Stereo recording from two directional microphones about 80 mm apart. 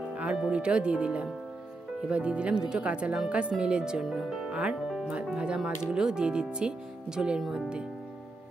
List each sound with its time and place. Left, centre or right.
0.1 s speech: centre